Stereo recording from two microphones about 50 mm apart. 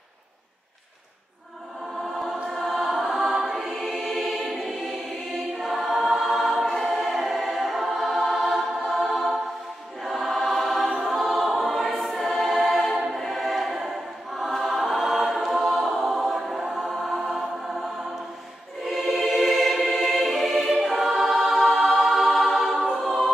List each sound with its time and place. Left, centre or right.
2.1 s choir: centre
13.1 s music: centre
14.3 s choir: centre
18.9 s music: centre
20.8 s choir: centre